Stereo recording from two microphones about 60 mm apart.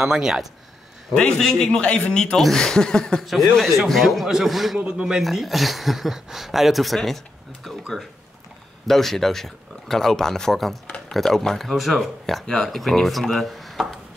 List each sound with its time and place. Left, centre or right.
0.0 s speech: centre
1.1 s speech: centre
3.3 s speech: centre
4.7 s speech: centre
5.2 s speech: centre
7.7 s a sound: centre
8.8 s speech: centre